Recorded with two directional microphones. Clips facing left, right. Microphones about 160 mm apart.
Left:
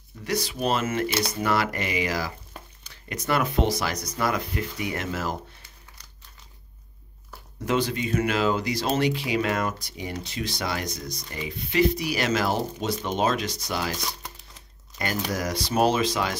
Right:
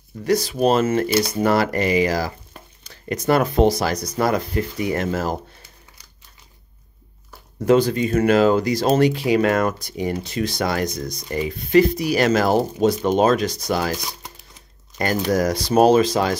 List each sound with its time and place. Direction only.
0.2 s speech: 40° right (ahead or behind)
7.6 s speech: 40° right (ahead or behind)
15.3 s speech: 40° right (ahead or behind)